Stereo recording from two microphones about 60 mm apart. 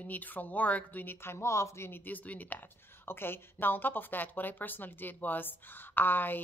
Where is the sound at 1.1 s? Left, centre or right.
Left.